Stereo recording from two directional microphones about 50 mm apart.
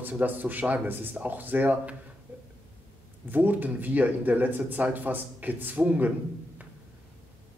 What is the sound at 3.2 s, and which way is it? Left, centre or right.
Speech, right.